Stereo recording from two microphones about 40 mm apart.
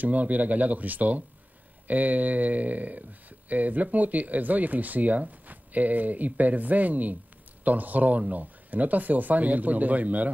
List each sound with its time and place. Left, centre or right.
0.0 s speech: right